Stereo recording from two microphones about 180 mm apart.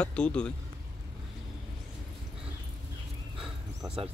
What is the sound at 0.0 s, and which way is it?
Speech, 5° left (ahead or behind).